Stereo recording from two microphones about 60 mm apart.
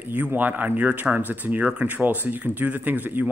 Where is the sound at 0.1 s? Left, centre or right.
Right.